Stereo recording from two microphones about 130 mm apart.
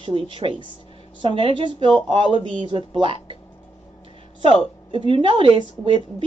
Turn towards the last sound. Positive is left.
turn(degrees=-40)  # may be behind; listen again after turning